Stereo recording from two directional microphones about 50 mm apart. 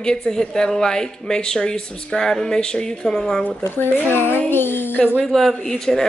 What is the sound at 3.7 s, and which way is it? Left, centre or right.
Speech, left.